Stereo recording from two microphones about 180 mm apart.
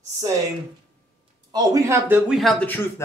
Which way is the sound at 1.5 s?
15° right (ahead or behind).